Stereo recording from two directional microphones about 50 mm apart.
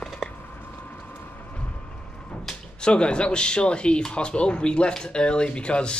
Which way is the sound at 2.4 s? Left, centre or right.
Centre.